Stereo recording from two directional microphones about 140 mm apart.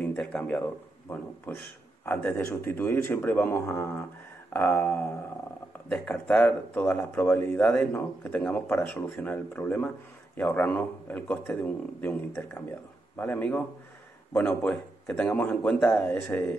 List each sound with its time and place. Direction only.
0.0 s speech: 5° left (ahead or behind)